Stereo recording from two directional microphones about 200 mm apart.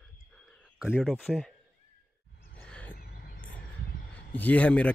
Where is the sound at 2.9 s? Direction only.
50° left (ahead or behind).